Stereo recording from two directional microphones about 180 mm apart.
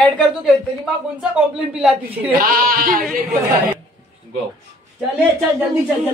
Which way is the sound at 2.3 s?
55° right (ahead or behind).